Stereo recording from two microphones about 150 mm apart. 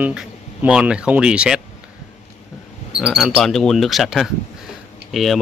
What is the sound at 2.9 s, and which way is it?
Speech, centre (ahead or behind).